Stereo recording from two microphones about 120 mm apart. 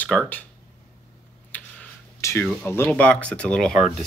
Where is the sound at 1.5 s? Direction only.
10° left (ahead or behind).